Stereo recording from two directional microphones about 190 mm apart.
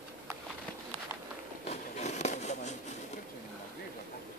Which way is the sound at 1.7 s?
35° left (ahead or behind).